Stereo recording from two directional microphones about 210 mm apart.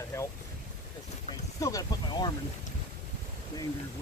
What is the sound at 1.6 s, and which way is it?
Speech, 15° left (ahead or behind).